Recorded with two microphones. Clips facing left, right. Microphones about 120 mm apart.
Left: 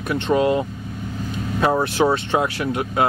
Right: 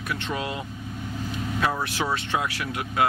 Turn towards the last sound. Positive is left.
turn(degrees=30)  # may be behind; listen again after turning